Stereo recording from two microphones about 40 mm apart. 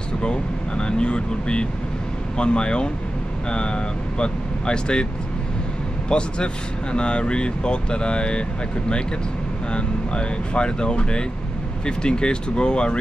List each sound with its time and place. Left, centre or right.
0.2 s speech: left
6.0 s speech: left